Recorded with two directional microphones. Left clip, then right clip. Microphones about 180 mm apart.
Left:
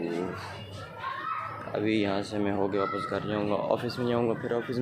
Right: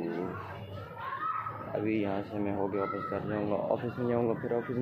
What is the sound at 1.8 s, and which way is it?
Speech, 45° left (ahead or behind).